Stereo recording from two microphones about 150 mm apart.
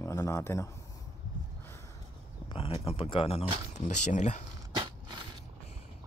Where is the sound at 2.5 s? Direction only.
40° left (ahead or behind).